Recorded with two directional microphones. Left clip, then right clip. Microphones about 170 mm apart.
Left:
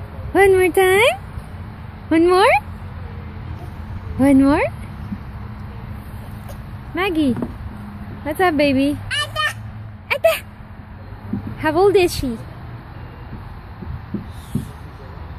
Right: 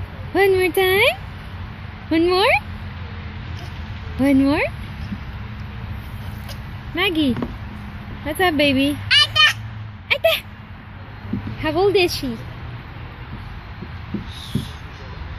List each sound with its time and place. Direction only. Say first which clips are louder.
0.3 s speech: left 3 dB; 10° left (ahead or behind)
4.2 s speech: left 3 dB; 10° left (ahead or behind)
7.0 s speech: even; 5° left (ahead or behind)
9.1 s a sound: right 7 dB; 35° left (ahead or behind)
10.0 s a sound: left 1 dB; 5° left (ahead or behind)
11.6 s speech: left 3 dB; 15° left (ahead or behind)